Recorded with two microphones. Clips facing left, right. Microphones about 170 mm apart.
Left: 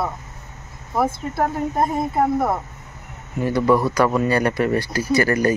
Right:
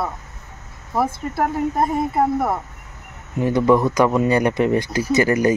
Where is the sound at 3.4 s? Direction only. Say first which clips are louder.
Right 2 dB; 20° right (ahead or behind).